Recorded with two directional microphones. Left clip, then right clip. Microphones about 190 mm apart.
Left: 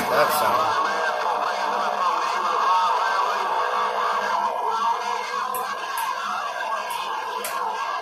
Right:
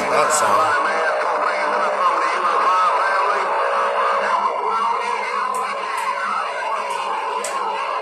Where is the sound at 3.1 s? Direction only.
30° right (ahead or behind).